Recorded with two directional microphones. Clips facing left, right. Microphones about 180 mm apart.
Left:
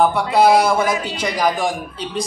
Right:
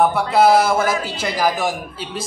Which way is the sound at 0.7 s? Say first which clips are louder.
Even; 15° left (ahead or behind).